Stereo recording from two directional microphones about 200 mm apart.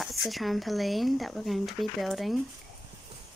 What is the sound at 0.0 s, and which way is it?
Speech, centre (ahead or behind).